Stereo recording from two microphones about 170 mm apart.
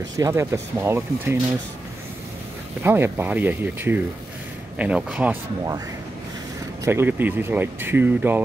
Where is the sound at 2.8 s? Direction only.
10° right (ahead or behind).